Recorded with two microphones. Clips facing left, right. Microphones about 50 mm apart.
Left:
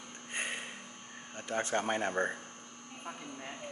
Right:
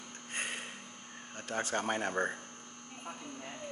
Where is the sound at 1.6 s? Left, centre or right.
Left.